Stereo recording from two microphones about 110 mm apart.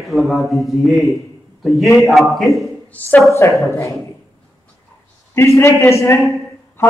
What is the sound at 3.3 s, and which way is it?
Speech, 25° left (ahead or behind).